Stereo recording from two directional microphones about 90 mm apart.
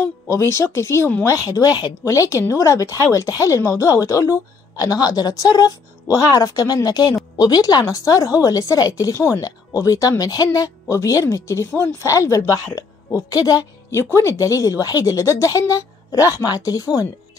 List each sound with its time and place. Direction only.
0.0 s speech: 30° left (ahead or behind)
1.5 s a woman's voice: 45° left (ahead or behind)
13.8 s speech: 30° left (ahead or behind)